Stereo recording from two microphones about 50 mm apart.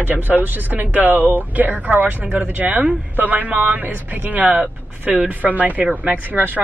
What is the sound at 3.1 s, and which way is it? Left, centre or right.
Speech, right.